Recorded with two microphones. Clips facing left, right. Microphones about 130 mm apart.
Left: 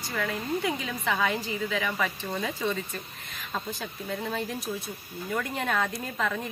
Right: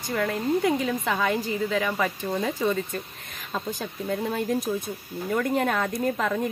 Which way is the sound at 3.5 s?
15° right (ahead or behind).